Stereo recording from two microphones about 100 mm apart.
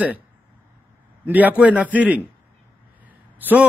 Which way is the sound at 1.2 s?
15° right (ahead or behind).